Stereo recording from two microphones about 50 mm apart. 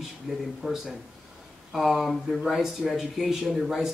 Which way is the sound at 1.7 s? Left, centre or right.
Centre.